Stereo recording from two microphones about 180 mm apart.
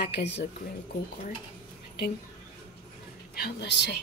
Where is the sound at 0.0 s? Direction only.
70° left (ahead or behind).